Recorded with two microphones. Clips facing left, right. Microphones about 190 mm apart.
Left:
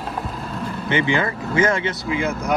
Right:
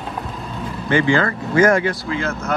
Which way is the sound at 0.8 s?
20° left (ahead or behind).